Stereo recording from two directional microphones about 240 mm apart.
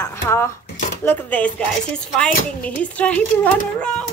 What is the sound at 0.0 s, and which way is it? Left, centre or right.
Speech, centre.